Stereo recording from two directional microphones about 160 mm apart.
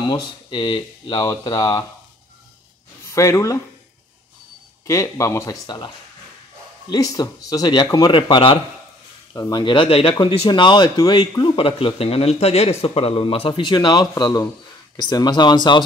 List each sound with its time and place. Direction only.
0.1 s speech: 30° left (ahead or behind)
3.1 s speech: 20° left (ahead or behind)
4.8 s speech: 20° left (ahead or behind)
6.9 s a man's voice: 20° left (ahead or behind)